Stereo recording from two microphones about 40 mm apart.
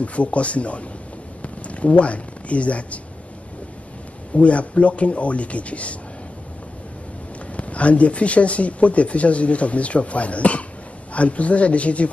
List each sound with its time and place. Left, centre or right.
0.0 s speech: left
4.3 s speech: left
7.5 s speech: left